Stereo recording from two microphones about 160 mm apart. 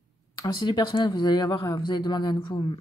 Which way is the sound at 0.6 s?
30° left (ahead or behind).